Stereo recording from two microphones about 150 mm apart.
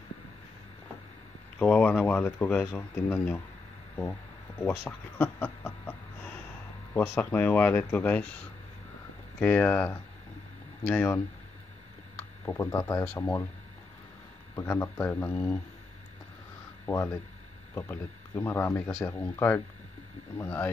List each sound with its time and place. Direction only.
1.6 s speech: 10° left (ahead or behind)
4.6 s a sound: 15° left (ahead or behind)
6.9 s speech: 15° left (ahead or behind)
12.4 s speech: 20° left (ahead or behind)
13.0 s speech: 10° left (ahead or behind)
14.7 s speech: 10° left (ahead or behind)
16.9 s speech: 10° left (ahead or behind)